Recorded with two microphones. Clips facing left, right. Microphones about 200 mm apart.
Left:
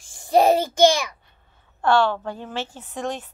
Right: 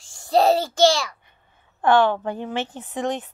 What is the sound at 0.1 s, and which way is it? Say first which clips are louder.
A child's voice: left 1 dB; 15° left (ahead or behind).